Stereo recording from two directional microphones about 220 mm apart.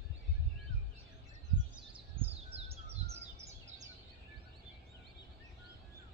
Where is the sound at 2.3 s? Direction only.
25° right (ahead or behind).